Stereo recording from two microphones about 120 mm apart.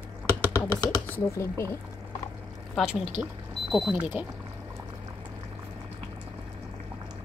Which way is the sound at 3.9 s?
15° right (ahead or behind).